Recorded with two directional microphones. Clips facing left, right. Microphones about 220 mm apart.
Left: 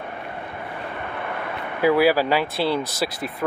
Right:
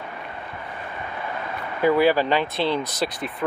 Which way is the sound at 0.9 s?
60° left (ahead or behind).